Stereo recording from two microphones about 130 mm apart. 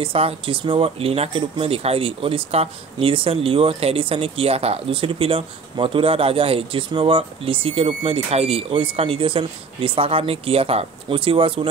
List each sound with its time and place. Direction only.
0.0 s speech: 45° right (ahead or behind)